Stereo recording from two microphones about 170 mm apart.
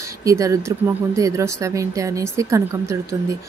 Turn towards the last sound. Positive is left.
turn(degrees=-20)  # may be behind; listen again after turning